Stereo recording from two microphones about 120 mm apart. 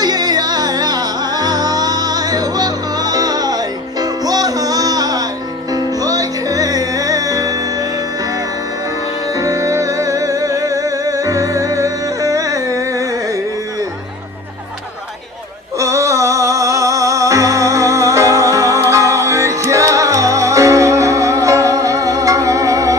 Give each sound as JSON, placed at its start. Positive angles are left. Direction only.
{"t": 0.0, "sound": "music", "side_deg": -35}
{"t": 9.3, "sound": "music", "side_deg": -30}
{"t": 15.8, "sound": "music", "side_deg": -25}